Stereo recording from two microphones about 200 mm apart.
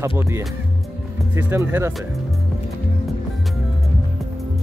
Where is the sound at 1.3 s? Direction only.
10° right (ahead or behind).